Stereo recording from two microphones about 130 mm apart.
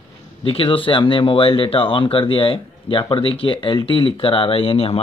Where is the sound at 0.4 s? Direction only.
45° left (ahead or behind).